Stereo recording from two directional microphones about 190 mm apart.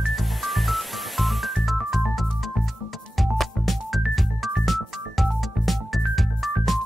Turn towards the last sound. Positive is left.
turn(degrees=0)  # may be behind; listen again after turning